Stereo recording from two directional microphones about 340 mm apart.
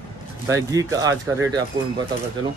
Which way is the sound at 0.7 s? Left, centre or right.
Centre.